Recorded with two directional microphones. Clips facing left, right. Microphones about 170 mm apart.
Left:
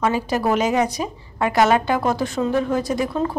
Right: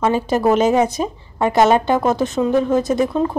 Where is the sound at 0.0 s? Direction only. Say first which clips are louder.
Right 4 dB; 25° right (ahead or behind).